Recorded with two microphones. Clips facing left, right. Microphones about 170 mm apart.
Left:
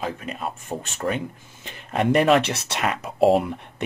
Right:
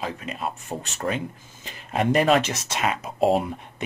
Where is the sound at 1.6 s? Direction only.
55° left (ahead or behind).